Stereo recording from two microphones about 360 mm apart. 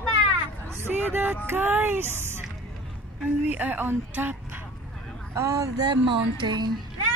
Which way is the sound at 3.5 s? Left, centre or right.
Centre.